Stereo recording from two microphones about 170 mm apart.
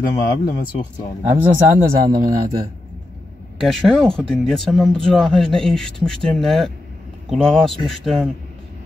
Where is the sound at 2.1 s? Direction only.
20° right (ahead or behind).